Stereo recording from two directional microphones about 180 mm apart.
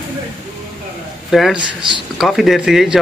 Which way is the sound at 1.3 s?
Centre (ahead or behind).